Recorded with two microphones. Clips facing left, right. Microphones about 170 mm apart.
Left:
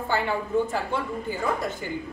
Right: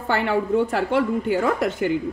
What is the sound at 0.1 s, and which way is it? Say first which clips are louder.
A woman's voice: right 5 dB; 70° right (ahead or behind).